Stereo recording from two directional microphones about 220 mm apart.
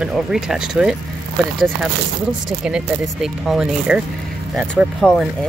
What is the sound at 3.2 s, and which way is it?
Speech, centre (ahead or behind).